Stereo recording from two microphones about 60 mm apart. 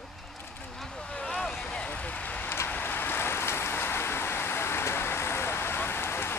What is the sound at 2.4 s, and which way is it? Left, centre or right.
Vehicle, left.